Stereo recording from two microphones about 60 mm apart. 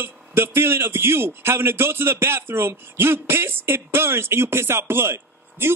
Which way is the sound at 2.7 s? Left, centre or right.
Right.